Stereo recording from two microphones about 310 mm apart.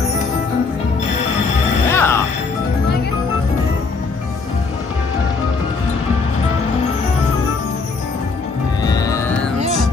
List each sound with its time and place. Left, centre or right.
1.9 s music: centre
8.8 s music: centre